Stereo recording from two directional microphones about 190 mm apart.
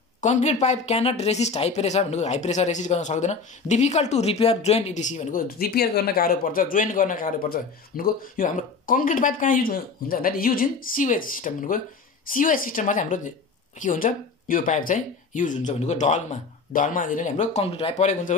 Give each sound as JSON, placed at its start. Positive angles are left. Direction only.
{"t": 0.2, "sound": "speech", "side_deg": 40}
{"t": 5.6, "sound": "speech", "side_deg": 55}